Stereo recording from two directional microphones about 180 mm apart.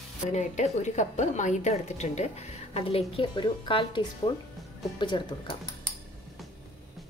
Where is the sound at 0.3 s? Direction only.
40° left (ahead or behind); by 5.6 s 25° left (ahead or behind).